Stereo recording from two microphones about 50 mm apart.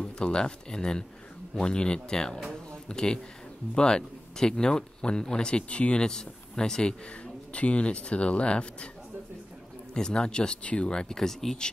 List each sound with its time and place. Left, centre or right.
0.0 s speech: centre
9.9 s speech: centre